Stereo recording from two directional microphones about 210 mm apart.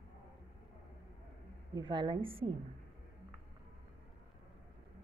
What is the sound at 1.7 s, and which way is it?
Speech, 20° right (ahead or behind).